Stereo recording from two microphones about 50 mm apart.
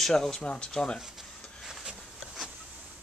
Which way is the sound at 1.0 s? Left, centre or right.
Centre.